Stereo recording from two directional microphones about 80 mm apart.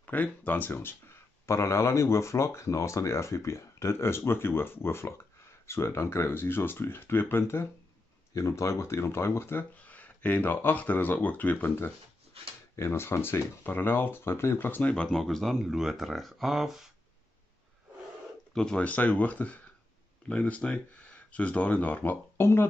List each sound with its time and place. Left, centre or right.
0.0 s speech: centre
8.4 s speech: left
9.8 s speech: centre
12.7 s speech: left; by 16.8 s centre
18.5 s speech: centre; by 22.7 s left